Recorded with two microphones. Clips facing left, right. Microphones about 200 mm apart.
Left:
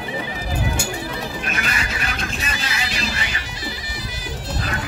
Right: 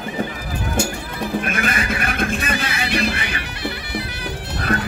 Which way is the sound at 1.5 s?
50° right (ahead or behind).